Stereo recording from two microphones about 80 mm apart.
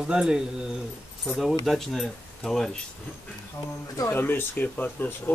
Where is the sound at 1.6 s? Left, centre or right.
Centre.